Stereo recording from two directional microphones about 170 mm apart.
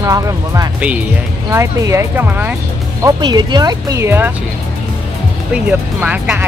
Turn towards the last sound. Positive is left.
turn(degrees=-10)  # may be behind; listen again after turning